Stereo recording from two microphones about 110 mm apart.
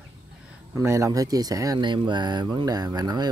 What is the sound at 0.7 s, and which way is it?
Speech, 25° right (ahead or behind).